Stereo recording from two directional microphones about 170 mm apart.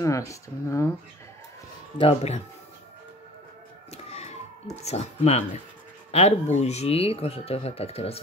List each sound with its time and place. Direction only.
0.0 s speech: 20° left (ahead or behind)
2.0 s speech: 35° left (ahead or behind)
3.9 s emergency vehicle: 40° left (ahead or behind)
4.7 s speech: 40° left (ahead or behind)